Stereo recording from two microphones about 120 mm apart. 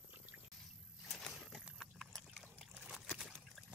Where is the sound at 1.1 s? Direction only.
Centre (ahead or behind).